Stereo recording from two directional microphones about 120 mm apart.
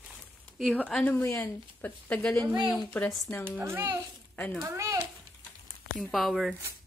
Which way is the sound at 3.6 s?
15° right (ahead or behind).